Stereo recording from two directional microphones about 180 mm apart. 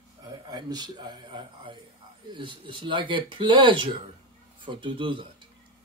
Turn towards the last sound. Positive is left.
turn(degrees=-25)  # may be behind; listen again after turning